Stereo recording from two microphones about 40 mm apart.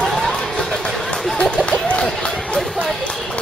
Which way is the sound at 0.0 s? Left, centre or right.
Centre.